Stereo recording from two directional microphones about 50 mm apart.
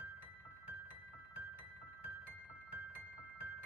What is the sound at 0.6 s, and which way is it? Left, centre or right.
Music, right.